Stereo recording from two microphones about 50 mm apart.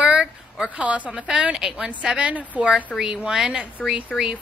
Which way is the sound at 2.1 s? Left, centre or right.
Right.